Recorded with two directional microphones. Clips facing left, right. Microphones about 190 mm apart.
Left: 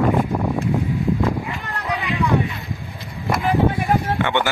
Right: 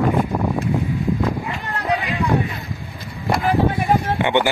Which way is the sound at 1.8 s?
35° right (ahead or behind).